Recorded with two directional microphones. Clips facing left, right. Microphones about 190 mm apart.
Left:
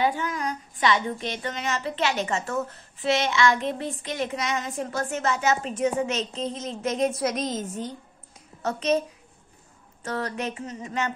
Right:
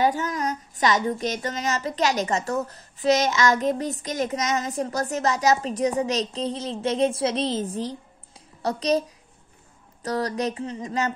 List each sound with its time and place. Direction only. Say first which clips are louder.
0.0 s speech: right 2 dB; 40° right (ahead or behind)
10.0 s speech: right 4 dB; 35° right (ahead or behind)